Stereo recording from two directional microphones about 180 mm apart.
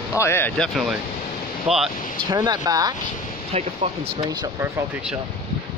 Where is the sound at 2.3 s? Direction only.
20° right (ahead or behind).